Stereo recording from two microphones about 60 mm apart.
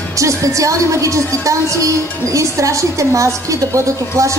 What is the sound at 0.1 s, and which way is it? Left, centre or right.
A woman's voice, right.